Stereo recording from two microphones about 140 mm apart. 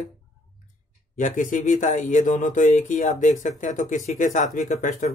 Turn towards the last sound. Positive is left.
turn(degrees=60)  # may be behind; listen again after turning